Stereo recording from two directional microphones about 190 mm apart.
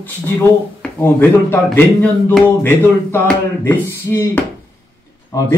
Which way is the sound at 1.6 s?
5° left (ahead or behind).